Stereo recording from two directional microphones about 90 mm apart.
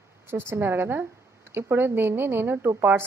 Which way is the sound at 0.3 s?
25° right (ahead or behind).